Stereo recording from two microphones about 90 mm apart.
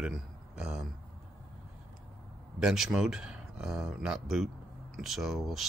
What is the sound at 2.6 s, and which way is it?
Speech, 5° right (ahead or behind).